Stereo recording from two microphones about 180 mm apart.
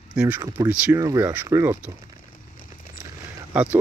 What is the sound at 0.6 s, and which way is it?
Speech, 10° right (ahead or behind).